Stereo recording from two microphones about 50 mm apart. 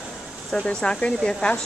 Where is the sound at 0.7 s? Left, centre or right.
Centre.